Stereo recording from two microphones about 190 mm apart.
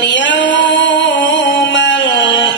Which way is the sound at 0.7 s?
70° left (ahead or behind).